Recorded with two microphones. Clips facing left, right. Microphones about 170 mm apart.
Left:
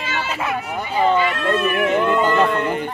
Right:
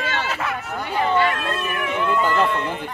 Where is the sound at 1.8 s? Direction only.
70° left (ahead or behind).